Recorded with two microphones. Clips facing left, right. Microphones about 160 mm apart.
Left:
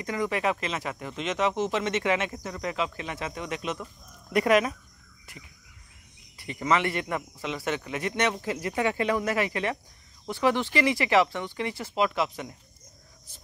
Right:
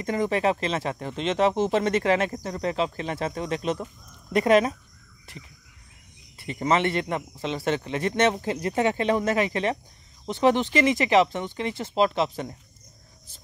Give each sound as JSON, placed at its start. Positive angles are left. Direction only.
{"t": 0.0, "sound": "speech", "side_deg": -30}
{"t": 6.3, "sound": "speech", "side_deg": -25}